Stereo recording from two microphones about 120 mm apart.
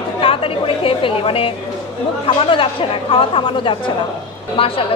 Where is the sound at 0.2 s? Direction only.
50° left (ahead or behind).